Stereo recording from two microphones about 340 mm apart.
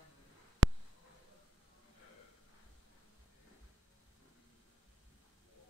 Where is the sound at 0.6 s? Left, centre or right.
Right.